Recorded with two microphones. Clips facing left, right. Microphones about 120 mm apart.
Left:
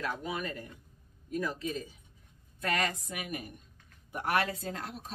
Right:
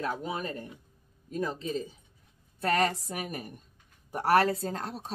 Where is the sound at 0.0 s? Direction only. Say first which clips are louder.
Right 3 dB; 30° right (ahead or behind).